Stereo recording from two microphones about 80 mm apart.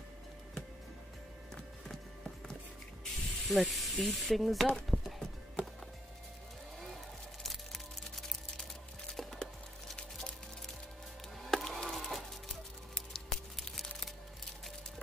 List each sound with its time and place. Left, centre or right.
3.0 s speech: centre
4.9 s music: centre
7.4 s music: centre
11.4 s a sound: centre